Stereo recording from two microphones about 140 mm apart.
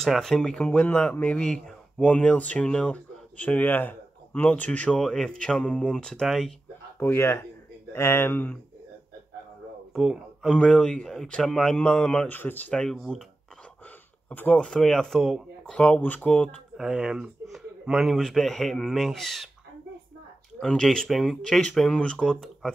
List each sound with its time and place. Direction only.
0.0 s speech: 5° left (ahead or behind)
7.0 s speech: 15° left (ahead or behind)
9.9 s speech: centre (ahead or behind)
14.3 s speech: 10° left (ahead or behind)
16.7 s speech: 5° right (ahead or behind)
20.5 s speech: 5° left (ahead or behind)